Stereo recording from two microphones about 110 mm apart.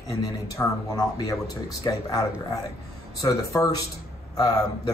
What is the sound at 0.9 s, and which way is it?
Speech, 35° left (ahead or behind).